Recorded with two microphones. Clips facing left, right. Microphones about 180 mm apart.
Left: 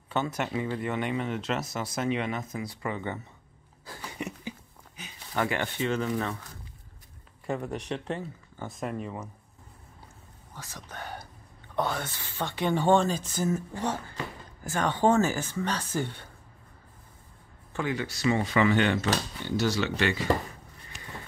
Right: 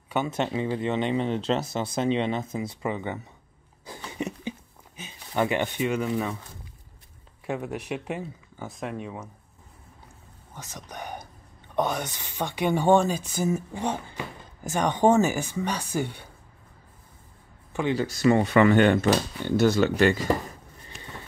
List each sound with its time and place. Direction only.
0.3 s speech: 25° right (ahead or behind)
4.2 s a sound: 20° right (ahead or behind)
7.4 s speech: 5° right (ahead or behind)
10.5 s whispering: 20° right (ahead or behind)
11.7 s speech: 20° right (ahead or behind)
17.9 s speech: 45° right (ahead or behind)